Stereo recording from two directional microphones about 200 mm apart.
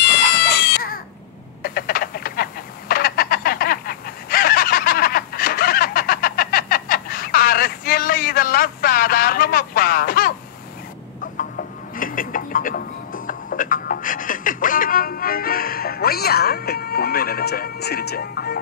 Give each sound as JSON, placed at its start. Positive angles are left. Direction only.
{"t": 0.0, "sound": "baby cry", "side_deg": 55}
{"t": 1.8, "sound": "telephone", "side_deg": 50}
{"t": 11.9, "sound": "music", "side_deg": 45}